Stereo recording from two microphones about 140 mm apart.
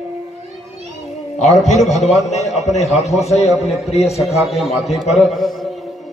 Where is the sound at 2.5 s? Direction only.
50° left (ahead or behind).